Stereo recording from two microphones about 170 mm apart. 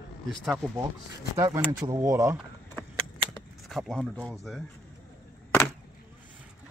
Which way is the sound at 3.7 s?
Centre (ahead or behind).